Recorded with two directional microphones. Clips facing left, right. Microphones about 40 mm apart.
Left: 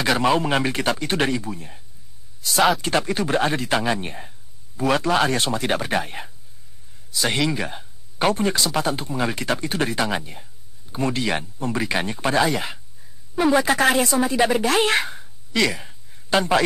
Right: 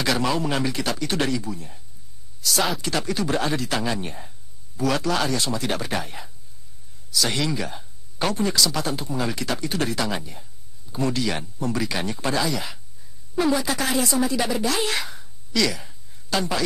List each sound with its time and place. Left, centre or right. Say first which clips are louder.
0.0 s speech: left 4 dB; left
2.8 s speech: left 3 dB; left
15.1 s a sound: left 2 dB; left